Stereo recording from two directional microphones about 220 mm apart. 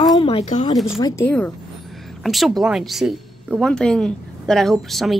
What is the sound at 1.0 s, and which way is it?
A woman's voice, 10° left (ahead or behind).